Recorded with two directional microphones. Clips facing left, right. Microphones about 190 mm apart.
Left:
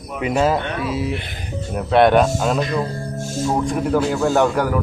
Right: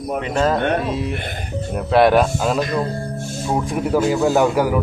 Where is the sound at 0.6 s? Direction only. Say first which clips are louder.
Right 6 dB; 50° right (ahead or behind).